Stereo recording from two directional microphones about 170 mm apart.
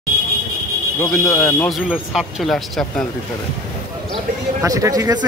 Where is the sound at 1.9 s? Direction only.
Centre (ahead or behind).